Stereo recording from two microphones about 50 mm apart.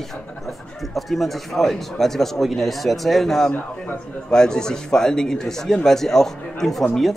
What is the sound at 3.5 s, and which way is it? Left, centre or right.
Speech, left.